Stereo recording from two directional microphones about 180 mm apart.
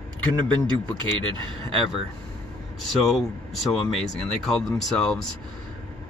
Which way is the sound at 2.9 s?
Centre (ahead or behind).